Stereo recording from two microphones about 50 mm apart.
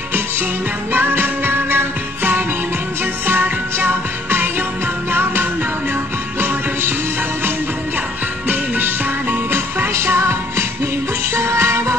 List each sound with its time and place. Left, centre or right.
0.9 s music: right
8.5 s music: right
9.9 s music: right
11.3 s music: right